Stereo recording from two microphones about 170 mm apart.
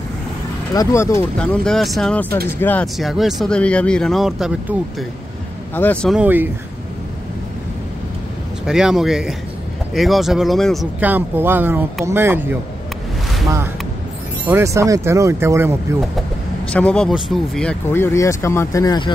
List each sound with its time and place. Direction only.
0.7 s speech: 20° left (ahead or behind)
2.2 s speech: 65° right (ahead or behind)
2.6 s speech: 10° left (ahead or behind)
3.0 s speech: centre (ahead or behind)
5.8 s speech: 5° left (ahead or behind)
6.1 s speech: 10° right (ahead or behind)
8.6 s speech: 5° right (ahead or behind)
11.0 s speech: 10° right (ahead or behind)
14.4 s speech: 15° right (ahead or behind)
16.7 s speech: 5° left (ahead or behind); by 19.1 s 25° left (ahead or behind)